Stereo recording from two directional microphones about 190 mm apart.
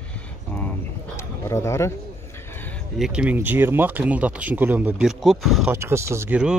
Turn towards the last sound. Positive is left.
turn(degrees=-5)  # may be behind; listen again after turning